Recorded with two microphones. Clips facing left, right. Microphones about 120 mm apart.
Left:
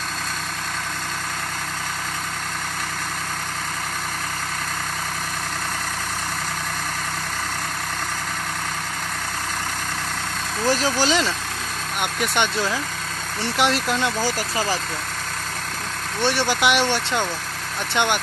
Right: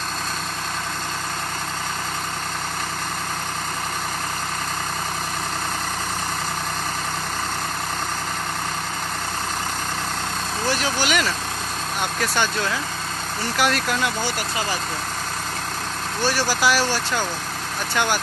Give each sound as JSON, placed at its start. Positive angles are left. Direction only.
{"t": 10.7, "sound": "speech", "side_deg": 35}
{"t": 16.2, "sound": "speech", "side_deg": 25}